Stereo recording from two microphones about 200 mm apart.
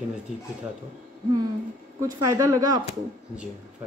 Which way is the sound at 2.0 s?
15° right (ahead or behind).